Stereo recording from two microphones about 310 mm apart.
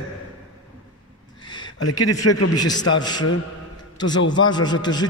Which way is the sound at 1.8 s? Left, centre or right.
Left.